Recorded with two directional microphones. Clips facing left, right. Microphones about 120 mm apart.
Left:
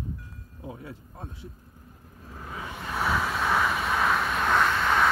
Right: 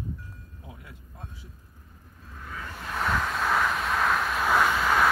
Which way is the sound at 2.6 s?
5° left (ahead or behind).